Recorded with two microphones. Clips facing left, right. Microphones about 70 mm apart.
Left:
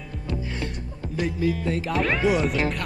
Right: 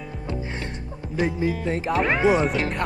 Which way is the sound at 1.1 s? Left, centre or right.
Right.